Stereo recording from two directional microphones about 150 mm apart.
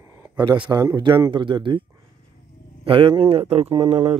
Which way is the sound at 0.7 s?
25° right (ahead or behind).